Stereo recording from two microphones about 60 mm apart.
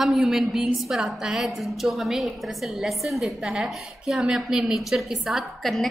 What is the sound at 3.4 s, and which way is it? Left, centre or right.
A woman's voice, centre.